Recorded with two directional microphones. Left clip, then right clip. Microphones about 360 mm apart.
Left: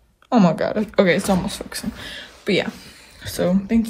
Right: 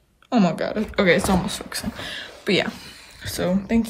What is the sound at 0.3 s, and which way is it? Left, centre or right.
Speech, centre.